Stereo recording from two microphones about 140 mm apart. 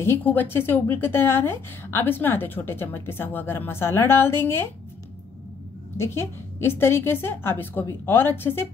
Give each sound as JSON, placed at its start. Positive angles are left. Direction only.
{"t": 0.0, "sound": "a woman's voice", "side_deg": 15}
{"t": 5.9, "sound": "a woman's voice", "side_deg": 15}